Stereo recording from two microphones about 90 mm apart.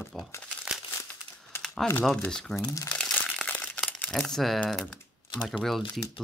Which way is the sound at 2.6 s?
40° left (ahead or behind).